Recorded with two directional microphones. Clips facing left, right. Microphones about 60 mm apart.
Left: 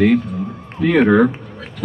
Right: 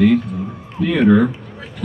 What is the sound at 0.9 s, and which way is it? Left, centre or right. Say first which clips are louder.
Speech: left 1 dB; left.